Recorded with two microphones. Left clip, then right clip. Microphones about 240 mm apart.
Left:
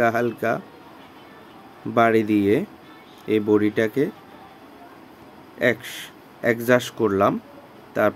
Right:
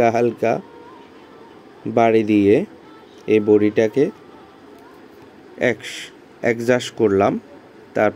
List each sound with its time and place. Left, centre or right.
0.0 s speech: centre
2.0 s speech: centre
5.6 s speech: centre